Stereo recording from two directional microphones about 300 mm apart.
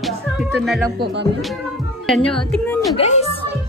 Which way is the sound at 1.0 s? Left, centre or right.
Right.